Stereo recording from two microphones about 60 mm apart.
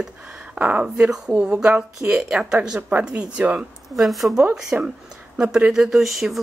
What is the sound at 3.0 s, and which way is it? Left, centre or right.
Speech, centre.